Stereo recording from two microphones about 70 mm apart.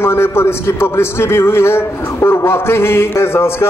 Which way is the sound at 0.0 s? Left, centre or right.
Left.